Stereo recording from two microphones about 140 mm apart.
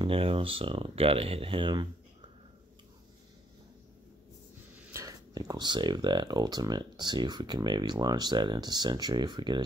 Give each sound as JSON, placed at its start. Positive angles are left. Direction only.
{"t": 0.0, "sound": "speech", "side_deg": -40}
{"t": 4.9, "sound": "speech", "side_deg": -25}